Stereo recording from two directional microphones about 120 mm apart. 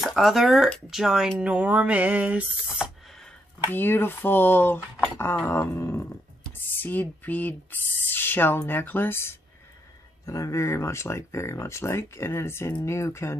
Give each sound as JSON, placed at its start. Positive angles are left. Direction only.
{"t": 0.0, "sound": "speech", "side_deg": 0}
{"t": 3.7, "sound": "speech", "side_deg": 20}